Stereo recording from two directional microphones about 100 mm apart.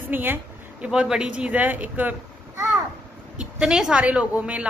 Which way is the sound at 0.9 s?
10° right (ahead or behind).